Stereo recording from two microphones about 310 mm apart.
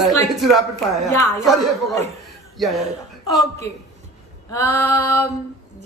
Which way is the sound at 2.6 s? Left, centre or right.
Centre.